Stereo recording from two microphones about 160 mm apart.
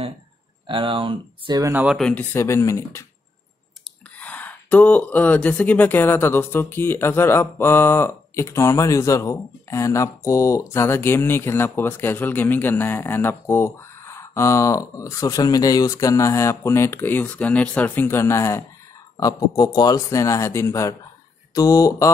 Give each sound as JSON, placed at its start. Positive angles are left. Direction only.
{"t": 0.7, "sound": "speech", "side_deg": -30}
{"t": 1.6, "sound": "speech", "side_deg": -10}
{"t": 2.0, "sound": "speech", "side_deg": 5}
{"t": 2.3, "sound": "speech", "side_deg": 15}
{"t": 4.2, "sound": "speech", "side_deg": 10}